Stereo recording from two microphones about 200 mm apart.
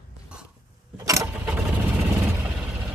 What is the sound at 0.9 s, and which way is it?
Mechanisms, 15° right (ahead or behind).